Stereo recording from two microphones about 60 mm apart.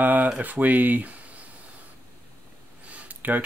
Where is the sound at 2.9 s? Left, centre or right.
Right.